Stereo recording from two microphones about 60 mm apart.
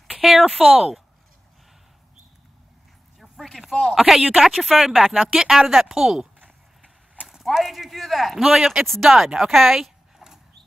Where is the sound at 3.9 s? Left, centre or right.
Centre.